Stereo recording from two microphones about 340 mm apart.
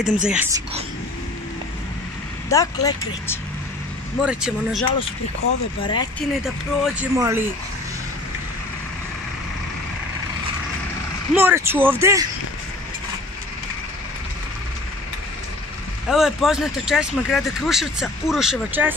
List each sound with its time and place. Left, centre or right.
0.0 s speech: centre
2.5 s speech: centre
4.2 s speech: centre
5.8 s speech: centre
6.4 s speech: centre
11.3 s speech: centre
16.1 s speech: centre